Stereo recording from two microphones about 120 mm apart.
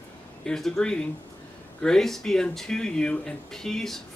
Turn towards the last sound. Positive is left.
turn(degrees=5)  # may be behind; listen again after turning